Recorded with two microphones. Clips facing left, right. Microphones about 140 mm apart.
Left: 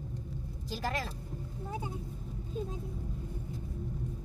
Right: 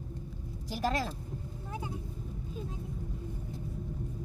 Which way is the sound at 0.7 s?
15° right (ahead or behind).